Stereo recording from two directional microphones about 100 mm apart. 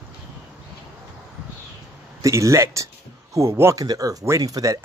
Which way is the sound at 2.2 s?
30° right (ahead or behind).